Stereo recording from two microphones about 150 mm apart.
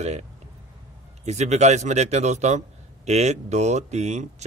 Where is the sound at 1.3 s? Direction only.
50° right (ahead or behind).